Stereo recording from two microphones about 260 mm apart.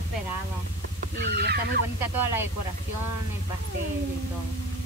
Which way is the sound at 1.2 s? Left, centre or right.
Right.